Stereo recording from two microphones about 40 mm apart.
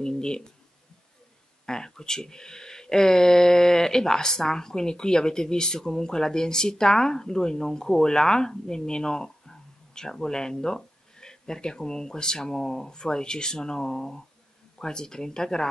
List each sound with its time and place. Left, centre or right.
0.0 s speech: centre
1.7 s speech: centre